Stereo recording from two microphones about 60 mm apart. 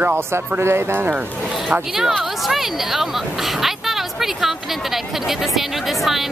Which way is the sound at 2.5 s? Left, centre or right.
Centre.